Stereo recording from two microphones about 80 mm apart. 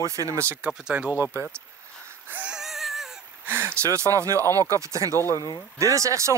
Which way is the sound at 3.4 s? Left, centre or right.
Right.